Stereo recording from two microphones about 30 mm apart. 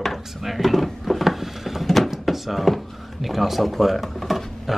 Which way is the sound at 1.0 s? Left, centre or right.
Centre.